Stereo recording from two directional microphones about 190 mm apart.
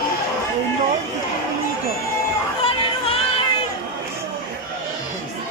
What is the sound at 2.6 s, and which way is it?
Music, 30° left (ahead or behind).